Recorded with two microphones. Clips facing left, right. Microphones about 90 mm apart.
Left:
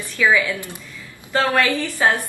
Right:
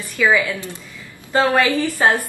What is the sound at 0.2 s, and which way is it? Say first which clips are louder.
Speech: right 1 dB; centre (ahead or behind).